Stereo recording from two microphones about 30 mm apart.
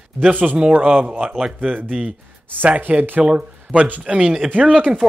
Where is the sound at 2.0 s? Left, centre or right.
Right.